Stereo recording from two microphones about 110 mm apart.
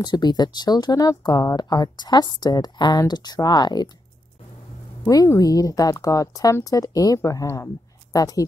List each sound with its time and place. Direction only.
0.0 s speech: 40° left (ahead or behind)
5.0 s speech: 30° left (ahead or behind)